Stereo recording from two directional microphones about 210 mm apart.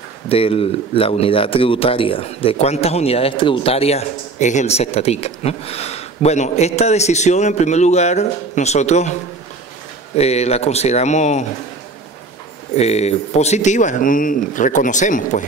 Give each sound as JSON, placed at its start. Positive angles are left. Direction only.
{"t": 0.3, "sound": "speech", "side_deg": 25}
{"t": 10.1, "sound": "speech", "side_deg": 30}
{"t": 12.7, "sound": "speech", "side_deg": 30}